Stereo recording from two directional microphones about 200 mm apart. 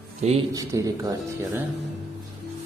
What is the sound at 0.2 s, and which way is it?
Speech, 30° right (ahead or behind).